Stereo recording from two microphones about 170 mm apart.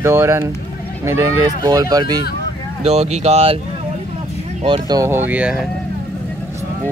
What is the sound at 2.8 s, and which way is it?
Speech, 40° right (ahead or behind).